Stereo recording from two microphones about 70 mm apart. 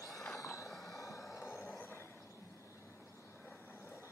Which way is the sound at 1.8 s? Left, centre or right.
Left.